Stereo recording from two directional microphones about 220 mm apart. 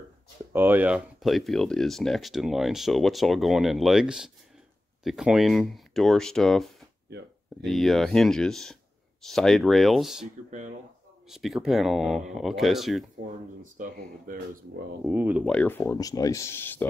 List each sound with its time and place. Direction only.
0.5 s speech: 10° right (ahead or behind)
11.2 s speech: centre (ahead or behind)
13.7 s speech: 40° right (ahead or behind)
15.0 s speech: 5° right (ahead or behind)
15.4 s speech: 5° left (ahead or behind)